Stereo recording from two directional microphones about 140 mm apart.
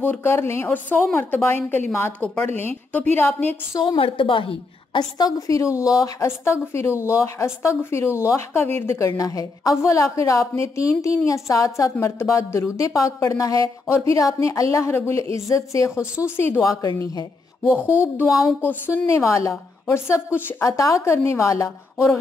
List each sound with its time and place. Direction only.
0.0 s speech: 15° left (ahead or behind)
3.8 s a woman's voice: 35° left (ahead or behind); by 22.2 s 20° left (ahead or behind)